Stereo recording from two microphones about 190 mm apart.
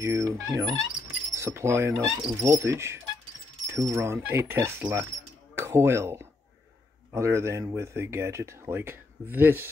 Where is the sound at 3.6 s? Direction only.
15° right (ahead or behind).